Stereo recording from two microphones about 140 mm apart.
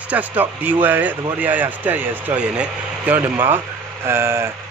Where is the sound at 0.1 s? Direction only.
10° right (ahead or behind).